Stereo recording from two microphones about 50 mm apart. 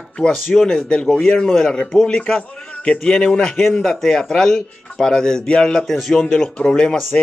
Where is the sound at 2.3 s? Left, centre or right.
Left.